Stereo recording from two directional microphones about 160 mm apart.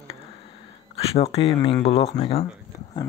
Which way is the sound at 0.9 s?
40° left (ahead or behind).